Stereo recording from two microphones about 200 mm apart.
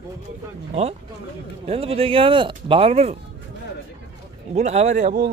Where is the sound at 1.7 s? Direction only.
30° right (ahead or behind).